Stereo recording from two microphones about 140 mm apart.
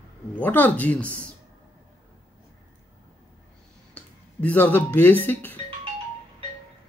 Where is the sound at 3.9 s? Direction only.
10° left (ahead or behind).